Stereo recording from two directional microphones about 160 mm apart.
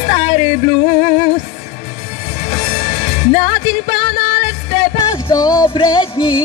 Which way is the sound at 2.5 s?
40° left (ahead or behind).